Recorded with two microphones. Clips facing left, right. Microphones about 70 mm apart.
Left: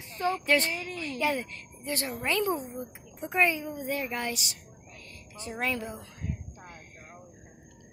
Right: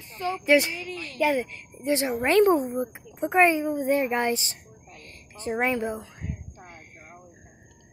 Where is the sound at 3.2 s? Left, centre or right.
Right.